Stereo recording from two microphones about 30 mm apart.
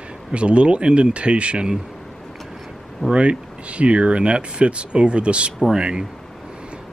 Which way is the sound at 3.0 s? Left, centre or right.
Right.